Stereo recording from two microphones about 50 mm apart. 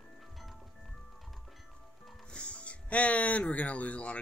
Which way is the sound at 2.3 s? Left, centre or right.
Left.